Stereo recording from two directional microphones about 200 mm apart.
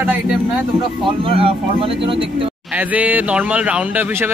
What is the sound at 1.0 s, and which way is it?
Speech, 30° right (ahead or behind).